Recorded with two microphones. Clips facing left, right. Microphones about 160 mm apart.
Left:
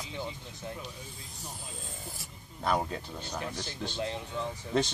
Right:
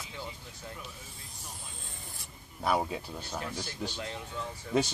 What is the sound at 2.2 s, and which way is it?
Speech, 5° right (ahead or behind).